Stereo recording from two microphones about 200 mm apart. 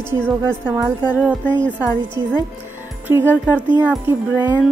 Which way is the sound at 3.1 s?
10° right (ahead or behind).